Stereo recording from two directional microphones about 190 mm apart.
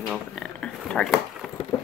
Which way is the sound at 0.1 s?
5° left (ahead or behind).